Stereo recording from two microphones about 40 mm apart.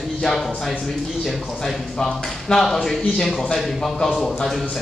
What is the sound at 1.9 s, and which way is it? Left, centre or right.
Speech, centre.